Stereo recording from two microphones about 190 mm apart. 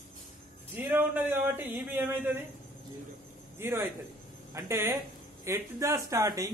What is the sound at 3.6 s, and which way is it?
A man's voice, 15° right (ahead or behind).